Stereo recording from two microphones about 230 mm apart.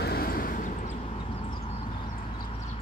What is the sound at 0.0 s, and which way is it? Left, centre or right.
Vehicle, left.